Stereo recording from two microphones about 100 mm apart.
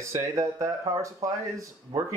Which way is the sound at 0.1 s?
35° right (ahead or behind).